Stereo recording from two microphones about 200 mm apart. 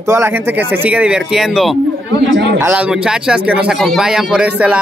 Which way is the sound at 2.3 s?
65° right (ahead or behind).